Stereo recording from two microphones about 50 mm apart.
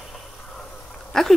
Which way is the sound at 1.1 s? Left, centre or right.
Centre.